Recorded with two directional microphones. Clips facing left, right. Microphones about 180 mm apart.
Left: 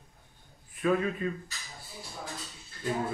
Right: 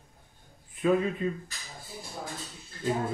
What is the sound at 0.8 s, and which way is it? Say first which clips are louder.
Speech: right 2 dB; 20° right (ahead or behind).